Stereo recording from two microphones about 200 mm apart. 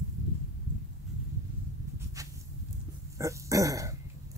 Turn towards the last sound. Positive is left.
turn(degrees=-15)  # may be behind; listen again after turning